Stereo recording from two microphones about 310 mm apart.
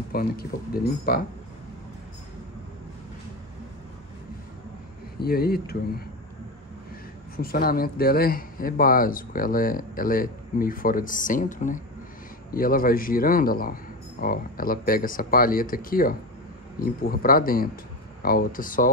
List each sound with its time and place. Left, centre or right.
0.1 s speech: left
5.2 s speech: left
7.3 s speech: left